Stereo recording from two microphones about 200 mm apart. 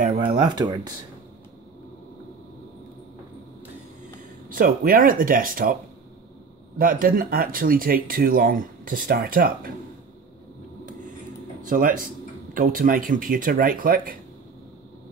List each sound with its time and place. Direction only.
0.2 s speech: 20° right (ahead or behind)
4.5 s speech: 45° right (ahead or behind)
6.8 s speech: 45° right (ahead or behind)
11.7 s speech: 45° right (ahead or behind)